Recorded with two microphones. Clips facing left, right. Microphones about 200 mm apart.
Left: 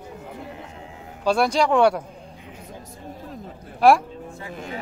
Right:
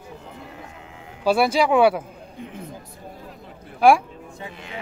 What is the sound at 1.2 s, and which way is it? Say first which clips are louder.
Speech: right 1 dB; 5° right (ahead or behind).